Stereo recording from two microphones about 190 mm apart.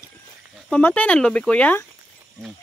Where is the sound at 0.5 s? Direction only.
5° left (ahead or behind).